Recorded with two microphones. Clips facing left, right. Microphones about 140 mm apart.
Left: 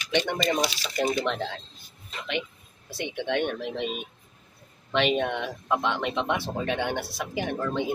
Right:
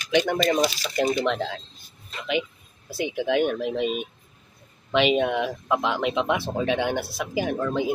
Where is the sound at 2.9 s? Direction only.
5° right (ahead or behind).